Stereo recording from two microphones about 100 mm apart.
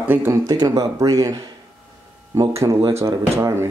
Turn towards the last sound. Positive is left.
turn(degrees=-25)  # may be behind; listen again after turning